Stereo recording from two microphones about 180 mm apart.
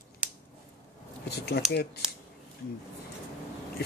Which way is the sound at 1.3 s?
65° left (ahead or behind).